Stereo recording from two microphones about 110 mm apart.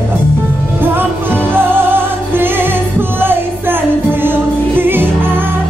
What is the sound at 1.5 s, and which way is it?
Music, 20° right (ahead or behind).